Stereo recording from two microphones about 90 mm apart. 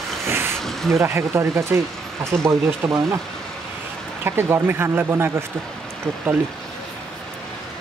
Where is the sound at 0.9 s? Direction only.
30° right (ahead or behind).